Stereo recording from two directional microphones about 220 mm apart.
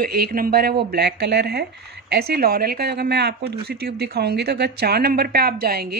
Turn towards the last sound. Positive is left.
turn(degrees=-45)  # may be behind; listen again after turning